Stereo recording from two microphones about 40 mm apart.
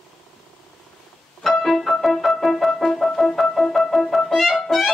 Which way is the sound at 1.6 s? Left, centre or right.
Centre.